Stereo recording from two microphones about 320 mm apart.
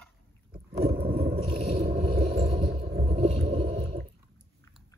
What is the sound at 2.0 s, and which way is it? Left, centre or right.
Boat, centre.